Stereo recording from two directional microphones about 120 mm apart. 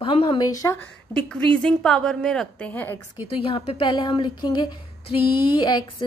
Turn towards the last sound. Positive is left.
turn(degrees=40)  # may be behind; listen again after turning